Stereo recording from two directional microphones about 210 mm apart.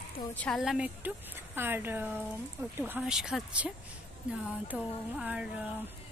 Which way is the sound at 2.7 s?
10° right (ahead or behind).